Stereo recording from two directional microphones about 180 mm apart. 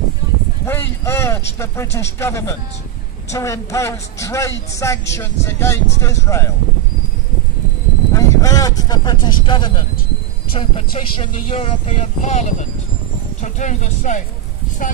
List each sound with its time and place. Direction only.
0.7 s a woman's voice: 15° left (ahead or behind)
8.1 s speech: 15° left (ahead or behind); by 15.0 s 50° left (ahead or behind)